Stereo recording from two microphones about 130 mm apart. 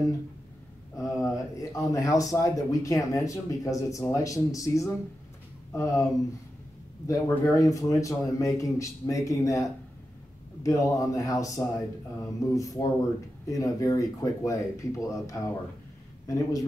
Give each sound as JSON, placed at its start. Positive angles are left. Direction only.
{"t": 0.9, "sound": "speech", "side_deg": 25}
{"t": 7.1, "sound": "speech", "side_deg": 25}